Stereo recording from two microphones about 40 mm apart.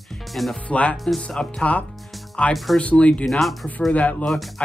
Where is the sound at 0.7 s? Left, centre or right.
Left.